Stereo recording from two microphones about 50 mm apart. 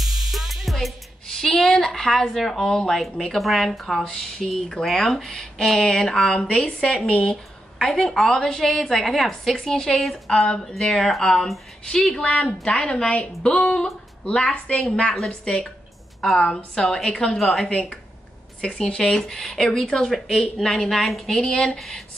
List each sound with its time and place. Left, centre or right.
0.0 s music: centre
1.6 s speech: centre
6.4 s a woman's voice: left
6.9 s speech: centre
12.2 s a woman's voice: left
15.1 s speech: centre
17.4 s speech: centre
18.6 s speech: centre